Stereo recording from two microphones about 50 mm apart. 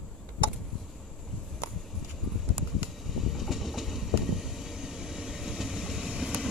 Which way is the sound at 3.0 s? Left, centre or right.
Centre.